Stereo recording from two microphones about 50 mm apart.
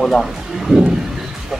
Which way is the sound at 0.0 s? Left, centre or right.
Centre.